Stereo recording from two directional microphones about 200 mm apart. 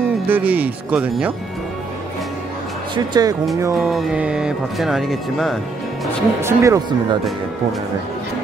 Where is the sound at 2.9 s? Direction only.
20° right (ahead or behind).